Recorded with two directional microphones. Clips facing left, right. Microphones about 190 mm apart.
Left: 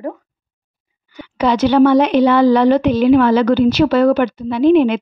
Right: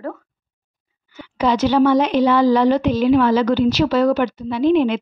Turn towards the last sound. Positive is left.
turn(degrees=60)  # may be behind; listen again after turning